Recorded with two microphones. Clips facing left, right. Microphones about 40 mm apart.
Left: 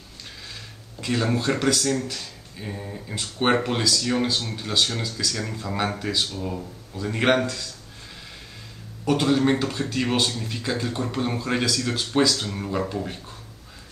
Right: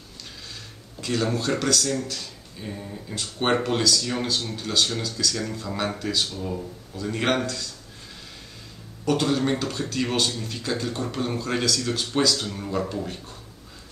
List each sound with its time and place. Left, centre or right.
1.0 s speech: centre
9.0 s speech: centre